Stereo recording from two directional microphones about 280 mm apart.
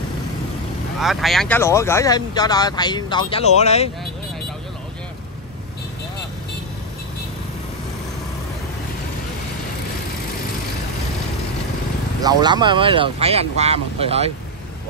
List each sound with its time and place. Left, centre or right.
0.9 s speech: centre; by 3.9 s left
12.2 s speech: centre